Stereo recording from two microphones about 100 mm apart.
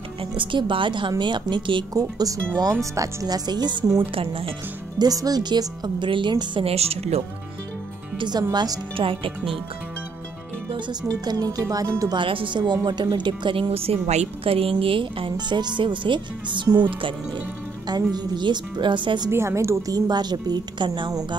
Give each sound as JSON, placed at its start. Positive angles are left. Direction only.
{"t": 0.4, "sound": "speech", "side_deg": -55}
{"t": 2.0, "sound": "speech", "side_deg": -35}
{"t": 4.0, "sound": "a woman's voice", "side_deg": -65}
{"t": 4.9, "sound": "speech", "side_deg": -40}
{"t": 6.6, "sound": "a woman's voice", "side_deg": -85}
{"t": 8.2, "sound": "speech", "side_deg": -45}
{"t": 8.9, "sound": "a woman's voice", "side_deg": -60}
{"t": 11.2, "sound": "speech", "side_deg": -40}
{"t": 12.2, "sound": "a woman's voice", "side_deg": -55}
{"t": 17.8, "sound": "speech", "side_deg": -45}
{"t": 19.3, "sound": "a woman's voice", "side_deg": -30}
{"t": 20.1, "sound": "speech", "side_deg": -45}